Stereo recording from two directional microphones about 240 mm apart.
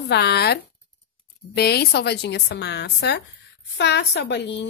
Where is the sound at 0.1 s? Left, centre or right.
Left.